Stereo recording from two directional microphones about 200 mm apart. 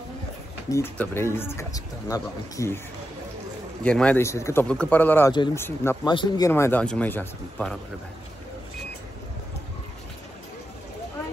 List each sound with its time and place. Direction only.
0.7 s speech: 15° left (ahead or behind)
3.8 s speech: 5° left (ahead or behind)
5.3 s speech: 20° left (ahead or behind); by 7.8 s 5° left (ahead or behind)